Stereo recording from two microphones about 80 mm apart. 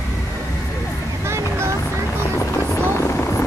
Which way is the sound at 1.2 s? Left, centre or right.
Right.